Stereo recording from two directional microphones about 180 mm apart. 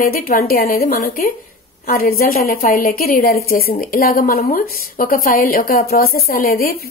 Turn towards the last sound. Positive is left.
turn(degrees=55)  # may be behind; listen again after turning